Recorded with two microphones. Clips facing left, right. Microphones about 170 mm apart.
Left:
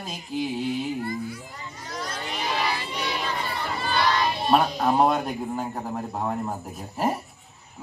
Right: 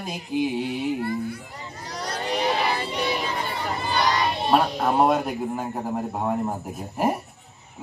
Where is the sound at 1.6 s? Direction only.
30° right (ahead or behind).